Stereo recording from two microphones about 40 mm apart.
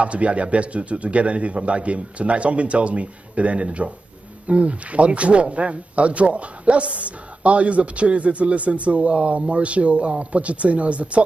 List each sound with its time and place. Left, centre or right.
0.0 s speech: right